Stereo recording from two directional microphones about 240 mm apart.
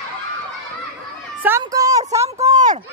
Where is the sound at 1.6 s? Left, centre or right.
Centre.